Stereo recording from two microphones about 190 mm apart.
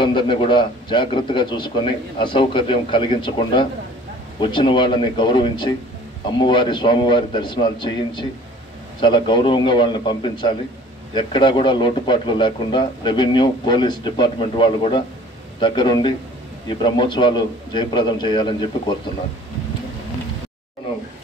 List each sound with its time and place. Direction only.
0.0 s speech: 25° left (ahead or behind)